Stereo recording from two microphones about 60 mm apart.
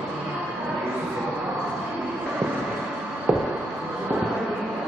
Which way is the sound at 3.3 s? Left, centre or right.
Centre.